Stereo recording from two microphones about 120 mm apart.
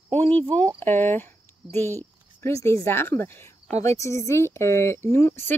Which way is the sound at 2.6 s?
20° left (ahead or behind).